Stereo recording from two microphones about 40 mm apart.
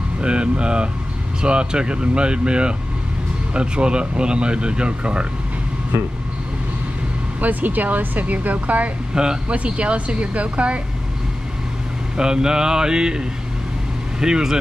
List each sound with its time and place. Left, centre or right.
0.2 s speech: right
7.3 s speech: right
9.1 s speech: centre
9.5 s speech: right
12.2 s a sound: centre
14.2 s a sound: centre